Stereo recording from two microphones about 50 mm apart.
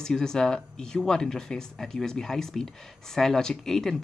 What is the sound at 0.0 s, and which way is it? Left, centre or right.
Speech, centre.